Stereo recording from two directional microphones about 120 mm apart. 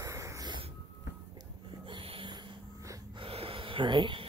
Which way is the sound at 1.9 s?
50° right (ahead or behind).